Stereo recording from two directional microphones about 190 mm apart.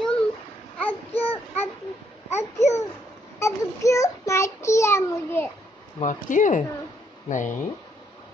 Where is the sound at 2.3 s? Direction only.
35° left (ahead or behind).